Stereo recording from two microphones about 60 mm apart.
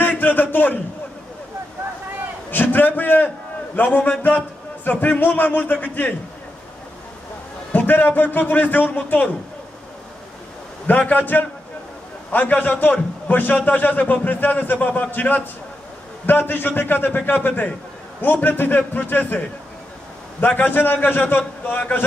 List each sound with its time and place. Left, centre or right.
0.0 s a sound: left
2.5 s a man's voice: left
7.7 s a man's voice: left
10.9 s a man's voice: left